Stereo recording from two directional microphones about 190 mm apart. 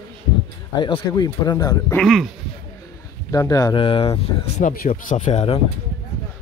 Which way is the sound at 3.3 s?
20° left (ahead or behind).